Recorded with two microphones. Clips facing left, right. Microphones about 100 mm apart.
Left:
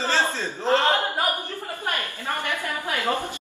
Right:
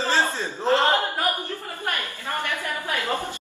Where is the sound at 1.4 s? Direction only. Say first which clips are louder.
Even; 15° left (ahead or behind).